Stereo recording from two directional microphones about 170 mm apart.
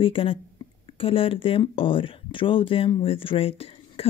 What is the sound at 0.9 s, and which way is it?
Speech, 30° left (ahead or behind).